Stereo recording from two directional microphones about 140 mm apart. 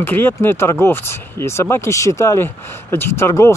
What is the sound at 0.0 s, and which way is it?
Speech, 15° left (ahead or behind).